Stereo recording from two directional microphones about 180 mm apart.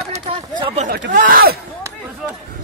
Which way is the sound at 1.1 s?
50° right (ahead or behind).